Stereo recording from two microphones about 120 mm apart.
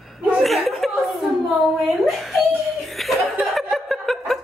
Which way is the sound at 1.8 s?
Centre (ahead or behind).